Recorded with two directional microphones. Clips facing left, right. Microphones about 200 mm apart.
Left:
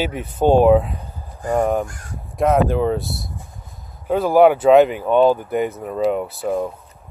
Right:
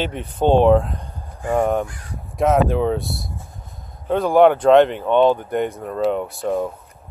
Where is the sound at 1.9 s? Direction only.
45° left (ahead or behind).